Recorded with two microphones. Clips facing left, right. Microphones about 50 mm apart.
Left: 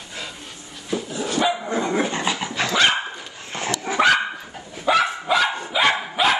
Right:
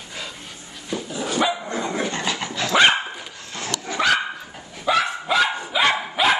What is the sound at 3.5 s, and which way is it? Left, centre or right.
Dog, left.